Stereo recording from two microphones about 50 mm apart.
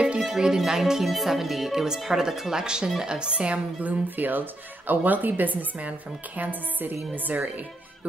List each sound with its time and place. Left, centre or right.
0.2 s speech: centre
4.2 s speech: right